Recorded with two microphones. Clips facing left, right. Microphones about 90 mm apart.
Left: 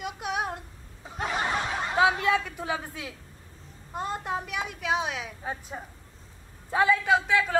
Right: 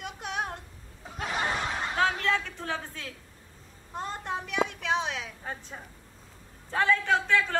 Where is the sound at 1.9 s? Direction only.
10° left (ahead or behind).